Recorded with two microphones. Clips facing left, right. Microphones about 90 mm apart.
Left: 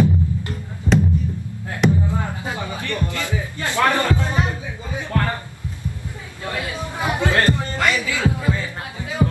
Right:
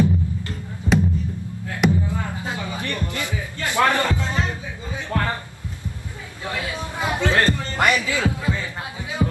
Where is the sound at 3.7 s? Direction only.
20° right (ahead or behind).